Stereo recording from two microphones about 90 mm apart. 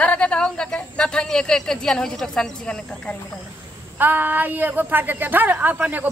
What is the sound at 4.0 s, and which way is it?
A woman's voice, 20° right (ahead or behind).